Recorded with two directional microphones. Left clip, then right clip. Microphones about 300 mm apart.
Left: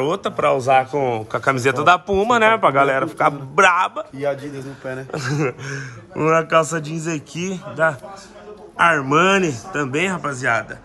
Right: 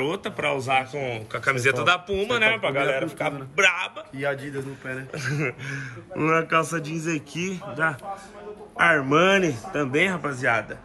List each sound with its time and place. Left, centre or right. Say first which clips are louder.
0.0 s speech: left 7 dB; centre
0.7 s a man's voice: left 8 dB; left
1.1 s speech: left 5 dB; centre
2.4 s a man's voice: left 6 dB; left
3.9 s speech: left 5 dB; centre